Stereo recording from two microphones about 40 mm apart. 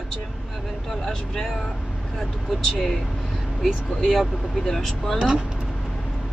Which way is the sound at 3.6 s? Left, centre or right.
Centre.